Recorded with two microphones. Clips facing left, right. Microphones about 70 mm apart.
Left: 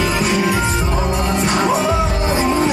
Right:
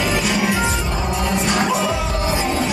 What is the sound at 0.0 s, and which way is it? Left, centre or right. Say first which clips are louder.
Music: left 2 dB; left.